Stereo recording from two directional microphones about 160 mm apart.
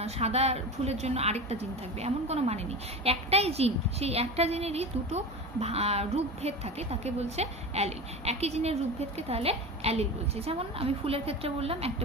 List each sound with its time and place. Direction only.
0.0 s a woman's voice: 40° right (ahead or behind)